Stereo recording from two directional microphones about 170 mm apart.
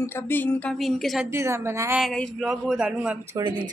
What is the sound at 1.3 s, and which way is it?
Speech, 15° right (ahead or behind).